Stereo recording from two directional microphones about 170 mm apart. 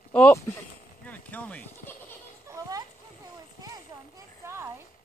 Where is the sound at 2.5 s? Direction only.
20° right (ahead or behind).